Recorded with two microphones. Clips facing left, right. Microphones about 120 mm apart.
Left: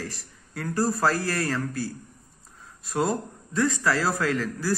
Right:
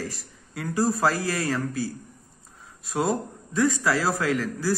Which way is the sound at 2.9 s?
10° right (ahead or behind).